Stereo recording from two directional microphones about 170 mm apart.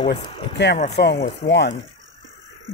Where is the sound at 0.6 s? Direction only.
90° left.